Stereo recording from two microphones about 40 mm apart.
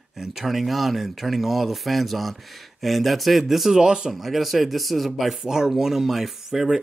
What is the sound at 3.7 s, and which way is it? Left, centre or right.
Speech, centre.